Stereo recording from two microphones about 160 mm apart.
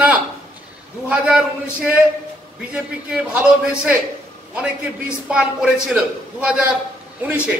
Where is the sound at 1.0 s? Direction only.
5° right (ahead or behind).